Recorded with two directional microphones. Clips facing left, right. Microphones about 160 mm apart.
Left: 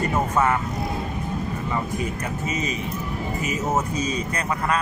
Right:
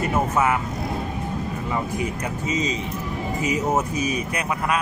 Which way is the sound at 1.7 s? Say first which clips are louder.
Right 2 dB; 15° right (ahead or behind).